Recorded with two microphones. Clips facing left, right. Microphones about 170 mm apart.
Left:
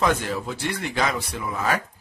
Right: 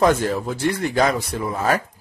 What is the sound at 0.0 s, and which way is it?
Speech, 45° right (ahead or behind).